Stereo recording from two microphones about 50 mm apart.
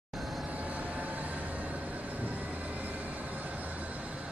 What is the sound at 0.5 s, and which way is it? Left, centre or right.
Vehicle, right.